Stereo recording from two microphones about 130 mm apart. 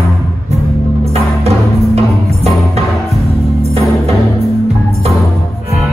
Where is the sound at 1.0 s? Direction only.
50° right (ahead or behind).